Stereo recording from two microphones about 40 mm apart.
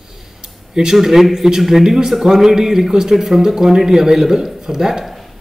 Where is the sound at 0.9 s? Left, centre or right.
Centre.